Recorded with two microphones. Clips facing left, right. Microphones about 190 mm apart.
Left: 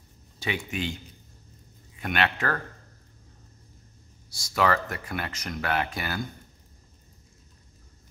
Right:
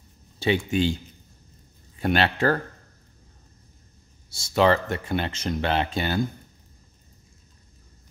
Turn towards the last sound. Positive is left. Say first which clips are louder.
# right 5 dB
turn(degrees=-25)  # may be behind; listen again after turning